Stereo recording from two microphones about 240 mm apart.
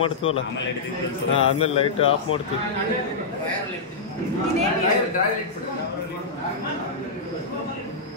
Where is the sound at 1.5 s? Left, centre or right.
Left.